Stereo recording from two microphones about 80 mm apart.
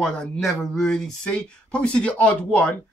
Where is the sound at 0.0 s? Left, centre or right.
Centre.